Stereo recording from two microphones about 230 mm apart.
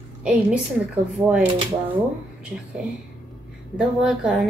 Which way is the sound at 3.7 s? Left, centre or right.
Centre.